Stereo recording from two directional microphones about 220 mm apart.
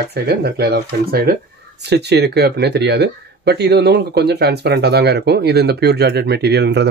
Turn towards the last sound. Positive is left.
turn(degrees=-50)  # may be behind; listen again after turning